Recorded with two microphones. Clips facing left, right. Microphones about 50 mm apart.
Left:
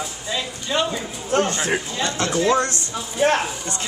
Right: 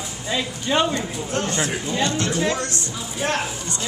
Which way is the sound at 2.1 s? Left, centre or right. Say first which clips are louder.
Left 3 dB; left.